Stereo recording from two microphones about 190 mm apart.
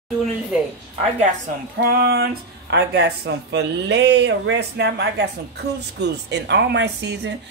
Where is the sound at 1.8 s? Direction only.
55° right (ahead or behind).